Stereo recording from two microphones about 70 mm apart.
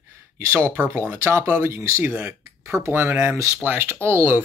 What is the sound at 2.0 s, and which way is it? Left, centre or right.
Speech, right.